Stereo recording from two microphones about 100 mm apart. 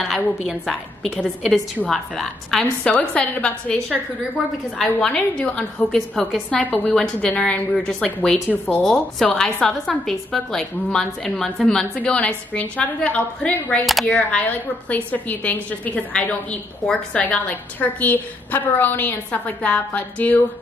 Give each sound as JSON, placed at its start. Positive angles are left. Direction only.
{"t": 0.5, "sound": "a woman's voice", "side_deg": 0}
{"t": 2.9, "sound": "a woman's voice", "side_deg": 15}